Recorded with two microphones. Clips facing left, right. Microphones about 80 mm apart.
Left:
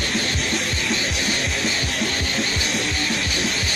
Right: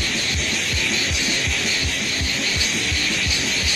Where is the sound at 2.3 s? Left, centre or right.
Left.